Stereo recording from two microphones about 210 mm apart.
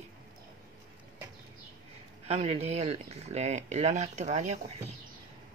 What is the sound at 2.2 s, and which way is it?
Speech, 30° right (ahead or behind).